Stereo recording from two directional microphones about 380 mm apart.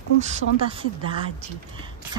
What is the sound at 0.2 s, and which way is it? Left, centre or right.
Speech, centre.